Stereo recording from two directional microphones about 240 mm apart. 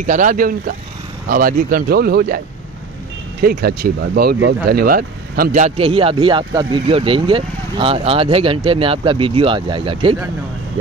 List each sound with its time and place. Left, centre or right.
0.0 s speech: right
3.4 s a man's voice: right; by 10.1 s centre